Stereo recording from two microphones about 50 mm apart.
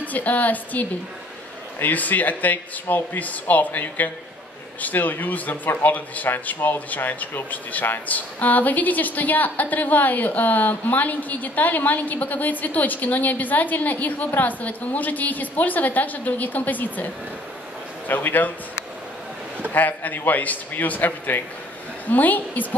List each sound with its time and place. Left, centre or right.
0.0 s a woman's voice: left
19.7 s a woman's voice: left